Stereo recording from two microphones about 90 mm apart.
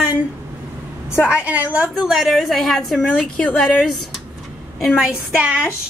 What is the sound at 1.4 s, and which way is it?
Speech, 15° right (ahead or behind).